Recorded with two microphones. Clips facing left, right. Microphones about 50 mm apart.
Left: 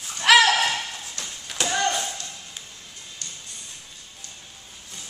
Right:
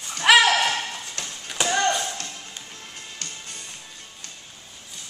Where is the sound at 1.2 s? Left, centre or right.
Right.